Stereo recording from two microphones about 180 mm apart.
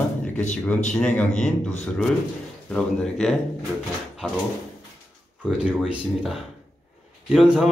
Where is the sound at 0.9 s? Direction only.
5° left (ahead or behind).